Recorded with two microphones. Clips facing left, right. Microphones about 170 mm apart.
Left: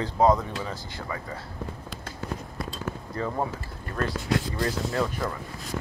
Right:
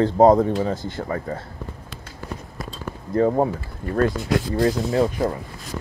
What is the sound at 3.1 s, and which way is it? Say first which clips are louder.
A man's voice: right 12 dB; 40° right (ahead or behind).